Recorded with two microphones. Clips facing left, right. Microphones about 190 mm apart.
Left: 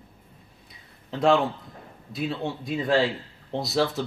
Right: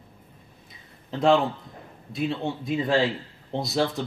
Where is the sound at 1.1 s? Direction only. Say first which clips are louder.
Right 1 dB; centre (ahead or behind).